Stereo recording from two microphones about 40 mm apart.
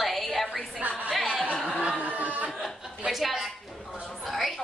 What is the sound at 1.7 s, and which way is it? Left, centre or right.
Speech, right.